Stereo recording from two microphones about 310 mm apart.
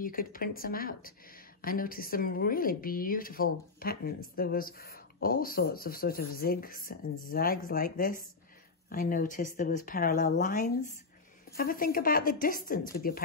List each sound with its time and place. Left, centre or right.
0.0 s speech: left